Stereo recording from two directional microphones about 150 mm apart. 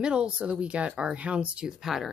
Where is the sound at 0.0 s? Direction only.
5° right (ahead or behind).